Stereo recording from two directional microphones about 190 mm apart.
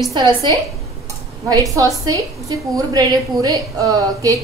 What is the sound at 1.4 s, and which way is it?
A woman's voice, 15° right (ahead or behind).